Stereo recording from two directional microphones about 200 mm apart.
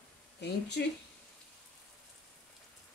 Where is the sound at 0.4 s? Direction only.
55° left (ahead or behind).